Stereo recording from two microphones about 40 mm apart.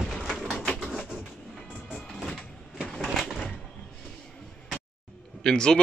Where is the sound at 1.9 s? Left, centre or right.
Centre.